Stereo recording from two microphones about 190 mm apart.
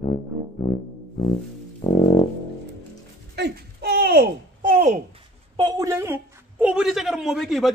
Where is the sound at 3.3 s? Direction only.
60° right (ahead or behind); by 5.0 s 40° right (ahead or behind).